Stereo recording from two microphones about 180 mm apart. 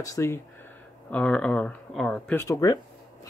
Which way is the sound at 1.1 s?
5° left (ahead or behind).